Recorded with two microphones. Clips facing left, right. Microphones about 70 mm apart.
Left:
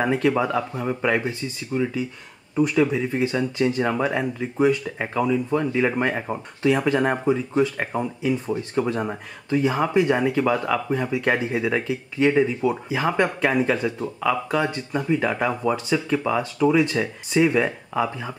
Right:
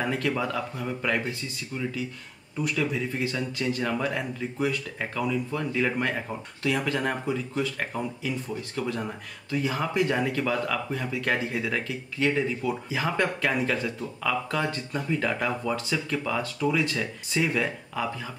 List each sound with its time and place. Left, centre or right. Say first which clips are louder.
0.0 s speech: left 7 dB; left
11.1 s speech: left 3 dB; centre